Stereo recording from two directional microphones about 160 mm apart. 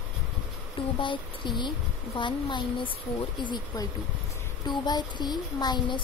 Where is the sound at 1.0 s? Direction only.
30° left (ahead or behind).